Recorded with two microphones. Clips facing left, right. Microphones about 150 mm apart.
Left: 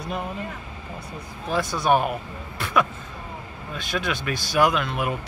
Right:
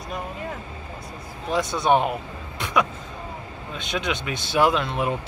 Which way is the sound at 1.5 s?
20° right (ahead or behind).